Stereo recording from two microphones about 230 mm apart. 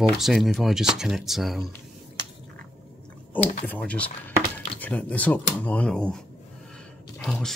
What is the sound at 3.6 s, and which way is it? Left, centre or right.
Speech, centre.